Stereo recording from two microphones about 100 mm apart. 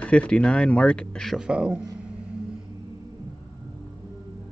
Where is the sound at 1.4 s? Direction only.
10° right (ahead or behind).